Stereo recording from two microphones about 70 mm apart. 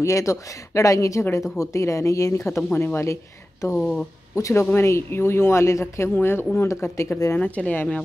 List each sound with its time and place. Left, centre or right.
0.0 s speech: left
2.7 s speech: left
7.3 s speech: left